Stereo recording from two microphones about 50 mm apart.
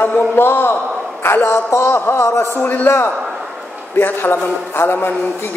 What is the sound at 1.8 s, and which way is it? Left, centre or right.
A man's voice, left.